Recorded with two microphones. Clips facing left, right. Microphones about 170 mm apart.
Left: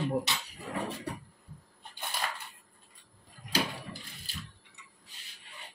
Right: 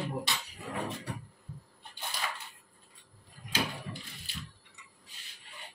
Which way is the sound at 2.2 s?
50° left (ahead or behind).